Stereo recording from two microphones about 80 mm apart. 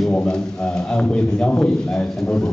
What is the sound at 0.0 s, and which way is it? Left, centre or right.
A man's voice, centre.